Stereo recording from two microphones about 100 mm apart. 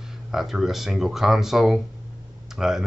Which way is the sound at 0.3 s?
Centre (ahead or behind).